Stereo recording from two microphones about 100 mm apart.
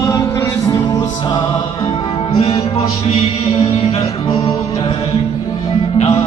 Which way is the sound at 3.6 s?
70° left (ahead or behind).